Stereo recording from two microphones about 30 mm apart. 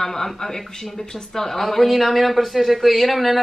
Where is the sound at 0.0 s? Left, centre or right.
Centre.